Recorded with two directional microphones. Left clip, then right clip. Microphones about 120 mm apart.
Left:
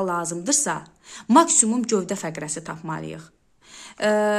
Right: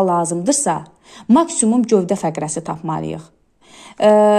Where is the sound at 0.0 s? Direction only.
30° right (ahead or behind).